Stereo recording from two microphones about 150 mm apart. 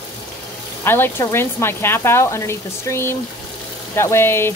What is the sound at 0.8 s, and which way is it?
Speech, 15° left (ahead or behind).